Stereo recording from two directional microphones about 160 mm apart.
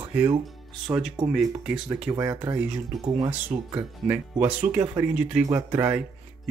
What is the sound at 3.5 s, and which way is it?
Speech, 50° right (ahead or behind).